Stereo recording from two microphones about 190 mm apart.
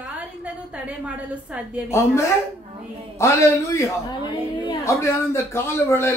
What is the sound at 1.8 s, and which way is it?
A man's voice, 15° left (ahead or behind).